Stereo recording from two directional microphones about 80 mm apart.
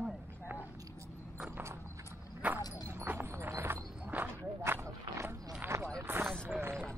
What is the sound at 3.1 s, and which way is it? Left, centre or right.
Clip-clop, right.